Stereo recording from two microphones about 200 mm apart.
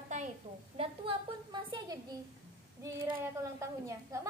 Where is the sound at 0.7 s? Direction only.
25° right (ahead or behind).